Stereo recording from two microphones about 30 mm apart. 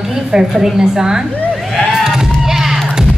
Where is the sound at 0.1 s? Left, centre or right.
Centre.